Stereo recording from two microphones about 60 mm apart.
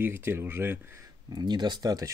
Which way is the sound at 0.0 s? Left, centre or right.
Right.